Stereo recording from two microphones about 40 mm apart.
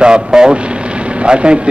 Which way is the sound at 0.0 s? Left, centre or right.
Right.